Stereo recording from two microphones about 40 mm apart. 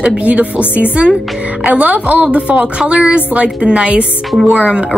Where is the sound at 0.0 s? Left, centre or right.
Right.